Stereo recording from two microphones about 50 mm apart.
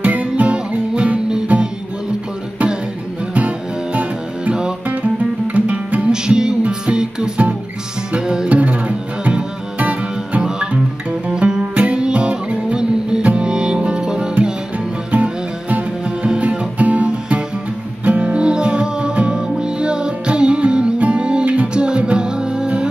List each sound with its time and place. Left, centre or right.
0.0 s music: right
3.3 s music: right
8.5 s music: right
15.0 s music: right